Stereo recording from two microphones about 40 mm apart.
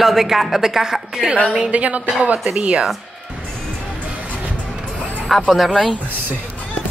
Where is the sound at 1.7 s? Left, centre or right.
Right.